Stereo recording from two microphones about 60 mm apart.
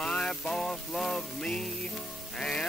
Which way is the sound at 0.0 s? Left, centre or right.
Centre.